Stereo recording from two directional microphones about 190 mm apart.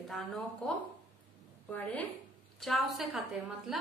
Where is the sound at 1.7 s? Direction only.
10° left (ahead or behind).